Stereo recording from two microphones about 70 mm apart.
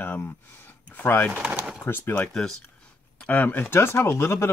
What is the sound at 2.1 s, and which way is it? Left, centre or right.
Speech, centre.